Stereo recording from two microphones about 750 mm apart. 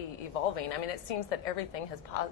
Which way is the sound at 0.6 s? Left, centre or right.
Left.